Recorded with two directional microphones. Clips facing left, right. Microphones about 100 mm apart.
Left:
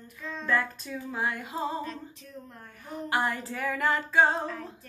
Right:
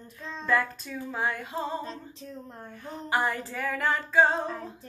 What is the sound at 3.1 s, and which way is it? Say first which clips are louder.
Singing: right 1 dB; centre (ahead or behind).